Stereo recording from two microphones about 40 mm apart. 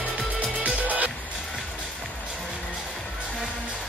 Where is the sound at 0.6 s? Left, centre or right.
Right.